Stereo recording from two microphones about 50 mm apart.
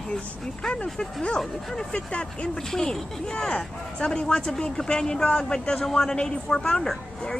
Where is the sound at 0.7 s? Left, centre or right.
Centre.